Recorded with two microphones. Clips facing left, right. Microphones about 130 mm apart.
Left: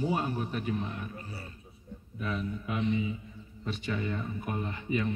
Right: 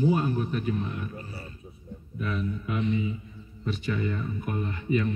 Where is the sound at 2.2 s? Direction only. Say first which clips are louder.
Right 3 dB; 25° left (ahead or behind).